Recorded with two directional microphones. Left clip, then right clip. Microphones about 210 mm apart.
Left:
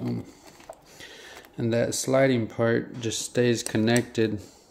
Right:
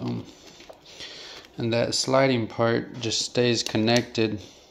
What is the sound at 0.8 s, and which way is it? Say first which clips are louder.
Speech: right 4 dB; 15° left (ahead or behind).